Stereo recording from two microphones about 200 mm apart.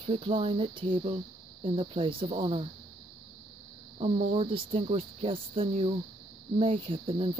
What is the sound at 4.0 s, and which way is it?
Speech, 30° right (ahead or behind).